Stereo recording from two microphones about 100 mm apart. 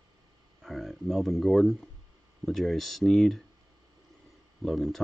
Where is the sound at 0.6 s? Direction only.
Centre (ahead or behind).